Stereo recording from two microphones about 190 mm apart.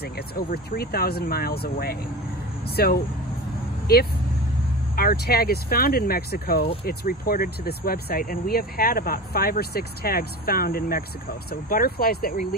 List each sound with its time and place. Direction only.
0.0 s speech: 55° left (ahead or behind)